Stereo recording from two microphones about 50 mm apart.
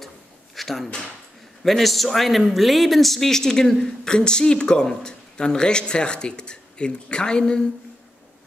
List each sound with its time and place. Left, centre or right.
0.6 s drawer open or close: centre
1.6 s a man's voice: centre